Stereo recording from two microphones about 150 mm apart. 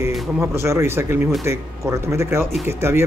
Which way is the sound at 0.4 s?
20° right (ahead or behind).